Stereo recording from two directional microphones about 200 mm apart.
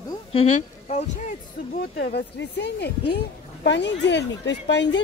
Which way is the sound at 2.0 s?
55° left (ahead or behind).